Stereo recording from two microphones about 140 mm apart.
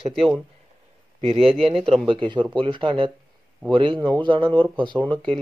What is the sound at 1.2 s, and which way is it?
Speech, 40° right (ahead or behind).